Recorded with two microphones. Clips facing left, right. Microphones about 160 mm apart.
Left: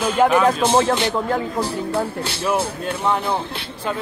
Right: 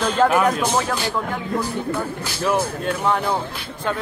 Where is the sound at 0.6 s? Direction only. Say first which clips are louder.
Left 5 dB; 25° left (ahead or behind).